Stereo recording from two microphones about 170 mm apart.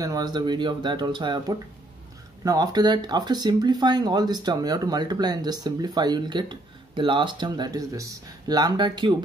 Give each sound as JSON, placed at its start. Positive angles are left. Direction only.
{"t": 0.0, "sound": "speech", "side_deg": -25}